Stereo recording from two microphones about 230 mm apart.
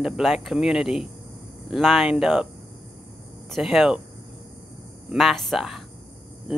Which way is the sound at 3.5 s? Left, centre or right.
Centre.